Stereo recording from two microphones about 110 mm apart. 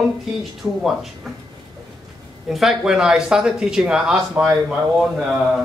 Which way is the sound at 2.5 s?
Centre (ahead or behind).